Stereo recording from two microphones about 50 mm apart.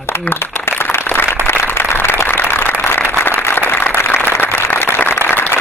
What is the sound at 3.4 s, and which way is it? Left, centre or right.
Applause, left.